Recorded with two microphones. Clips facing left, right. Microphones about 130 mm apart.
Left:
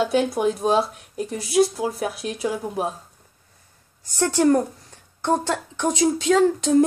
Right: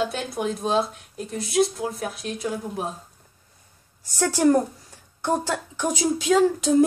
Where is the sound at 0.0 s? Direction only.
5° left (ahead or behind).